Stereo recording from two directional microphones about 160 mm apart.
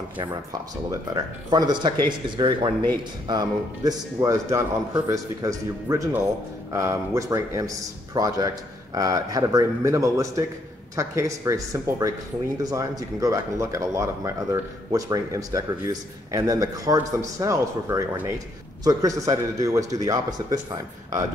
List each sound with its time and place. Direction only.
0.8 s speech: 25° right (ahead or behind)